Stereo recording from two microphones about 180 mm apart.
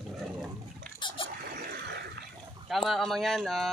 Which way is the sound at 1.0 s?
30° left (ahead or behind).